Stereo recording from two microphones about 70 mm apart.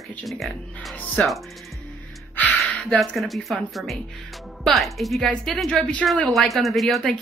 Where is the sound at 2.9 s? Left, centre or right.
Centre.